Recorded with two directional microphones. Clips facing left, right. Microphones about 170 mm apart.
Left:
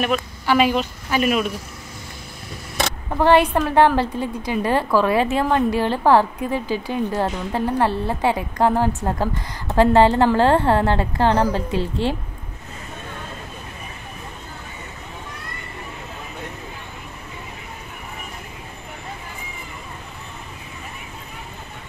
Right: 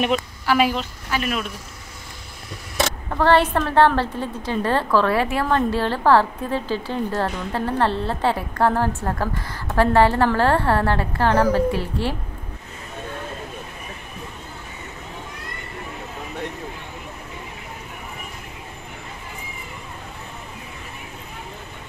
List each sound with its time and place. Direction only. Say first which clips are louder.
0.7 s a woman's voice: left 5 dB; 15° left (ahead or behind)
3.1 s a woman's voice: left 2 dB; 15° left (ahead or behind)